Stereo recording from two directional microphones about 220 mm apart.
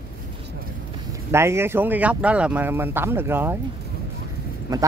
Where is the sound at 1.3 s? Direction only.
10° right (ahead or behind).